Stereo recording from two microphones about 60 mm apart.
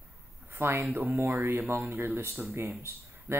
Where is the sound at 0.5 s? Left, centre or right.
Right.